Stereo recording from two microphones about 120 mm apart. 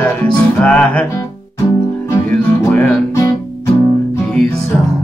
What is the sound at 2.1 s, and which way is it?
Music, 15° left (ahead or behind).